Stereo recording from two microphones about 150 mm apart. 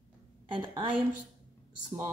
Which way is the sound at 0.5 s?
35° right (ahead or behind).